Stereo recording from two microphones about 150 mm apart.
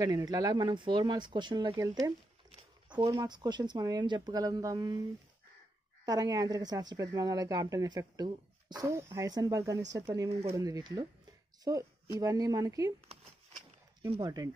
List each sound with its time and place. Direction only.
0.0 s speech: 25° right (ahead or behind)
6.0 s speech: 25° right (ahead or behind)
14.2 s speech: 25° right (ahead or behind)